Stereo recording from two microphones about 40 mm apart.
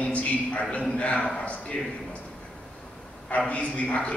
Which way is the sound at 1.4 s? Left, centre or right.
Left.